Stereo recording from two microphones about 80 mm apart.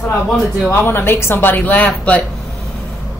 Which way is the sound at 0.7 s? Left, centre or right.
Left.